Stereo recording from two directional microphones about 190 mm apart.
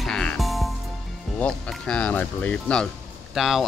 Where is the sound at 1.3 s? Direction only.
5° left (ahead or behind).